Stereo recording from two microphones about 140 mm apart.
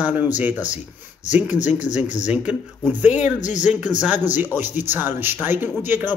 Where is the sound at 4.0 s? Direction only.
15° right (ahead or behind).